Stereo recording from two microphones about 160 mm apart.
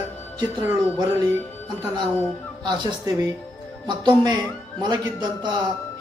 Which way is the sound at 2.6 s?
30° right (ahead or behind).